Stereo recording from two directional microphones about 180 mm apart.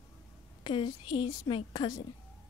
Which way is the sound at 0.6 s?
25° left (ahead or behind).